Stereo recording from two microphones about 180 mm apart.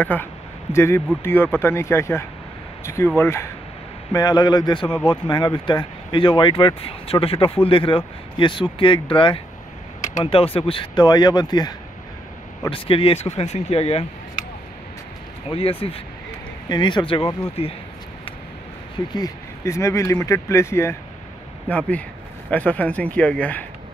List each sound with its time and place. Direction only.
0.0 s speech: 10° left (ahead or behind); by 14.0 s 35° left (ahead or behind)
15.5 s speech: 30° left (ahead or behind)
19.1 s speech: 15° left (ahead or behind)